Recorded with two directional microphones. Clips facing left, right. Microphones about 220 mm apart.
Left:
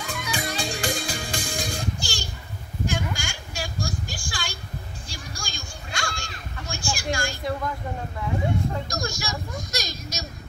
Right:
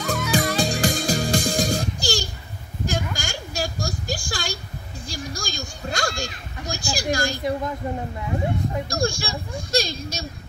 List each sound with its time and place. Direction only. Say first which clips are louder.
0.0 s music: right 8 dB; 40° right (ahead or behind)
2.9 s a sound: right 3 dB; 40° right (ahead or behind)
5.0 s children playing: right 7 dB; 40° right (ahead or behind)
8.8 s speech: right 6 dB; 30° right (ahead or behind)